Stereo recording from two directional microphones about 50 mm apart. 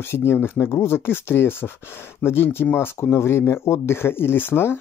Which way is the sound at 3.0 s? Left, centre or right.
Left.